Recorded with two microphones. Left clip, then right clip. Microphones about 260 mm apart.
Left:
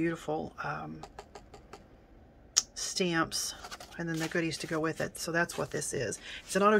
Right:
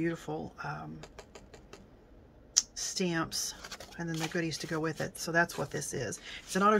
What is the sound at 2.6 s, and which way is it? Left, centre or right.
Speech, centre.